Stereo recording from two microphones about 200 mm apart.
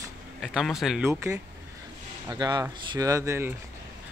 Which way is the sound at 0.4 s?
Centre (ahead or behind).